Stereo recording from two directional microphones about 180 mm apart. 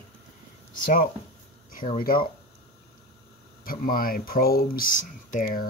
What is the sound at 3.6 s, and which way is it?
Speech, 55° left (ahead or behind).